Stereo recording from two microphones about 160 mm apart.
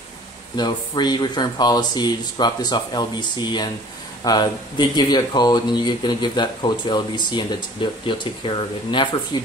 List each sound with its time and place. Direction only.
0.6 s speech: 25° left (ahead or behind)